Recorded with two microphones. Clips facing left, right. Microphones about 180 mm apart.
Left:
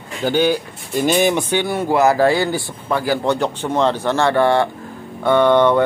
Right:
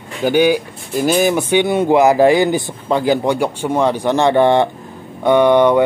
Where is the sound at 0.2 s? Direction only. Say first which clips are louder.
Right 4 dB; 10° right (ahead or behind).